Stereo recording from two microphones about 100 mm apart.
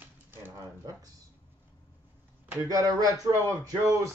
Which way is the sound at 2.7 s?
40° right (ahead or behind).